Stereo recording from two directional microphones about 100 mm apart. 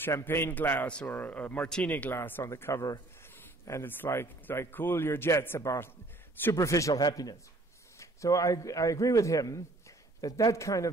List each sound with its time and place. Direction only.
0.0 s a man's voice: 25° left (ahead or behind)